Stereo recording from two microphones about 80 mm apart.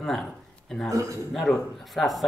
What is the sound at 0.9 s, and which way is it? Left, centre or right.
Speech, right.